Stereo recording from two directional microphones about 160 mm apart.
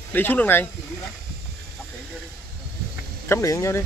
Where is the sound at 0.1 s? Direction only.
10° left (ahead or behind).